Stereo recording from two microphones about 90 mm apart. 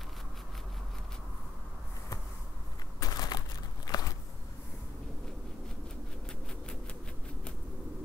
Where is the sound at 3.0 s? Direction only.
45° left (ahead or behind).